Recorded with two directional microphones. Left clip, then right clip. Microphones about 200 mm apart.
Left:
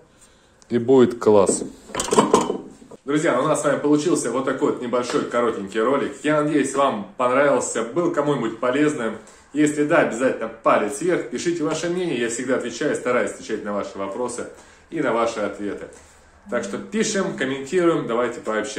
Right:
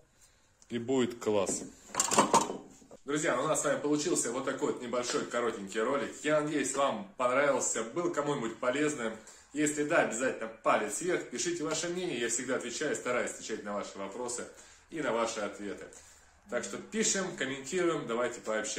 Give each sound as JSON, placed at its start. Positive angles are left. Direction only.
{"t": 0.7, "sound": "speech", "side_deg": 15}
{"t": 3.1, "sound": "speech", "side_deg": -5}